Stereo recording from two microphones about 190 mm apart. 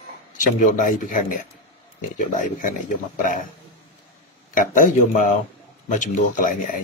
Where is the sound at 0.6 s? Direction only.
45° left (ahead or behind).